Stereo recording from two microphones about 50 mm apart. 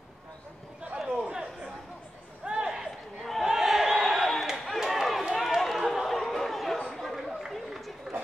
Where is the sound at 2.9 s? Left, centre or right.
Centre.